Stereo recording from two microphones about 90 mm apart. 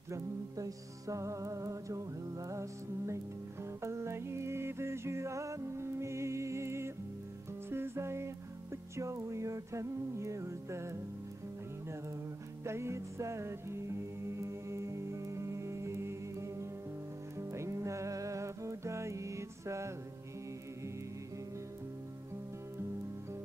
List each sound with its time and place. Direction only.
0.1 s music: 40° right (ahead or behind)
12.6 s music: 30° right (ahead or behind)